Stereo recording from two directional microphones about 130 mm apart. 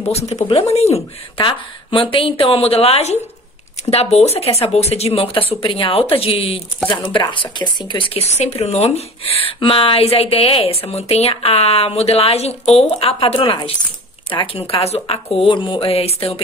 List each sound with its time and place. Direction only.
0.5 s speech: 50° left (ahead or behind)
1.4 s speech: 40° left (ahead or behind)
8.2 s speech: 55° left (ahead or behind)
13.5 s speech: 35° left (ahead or behind)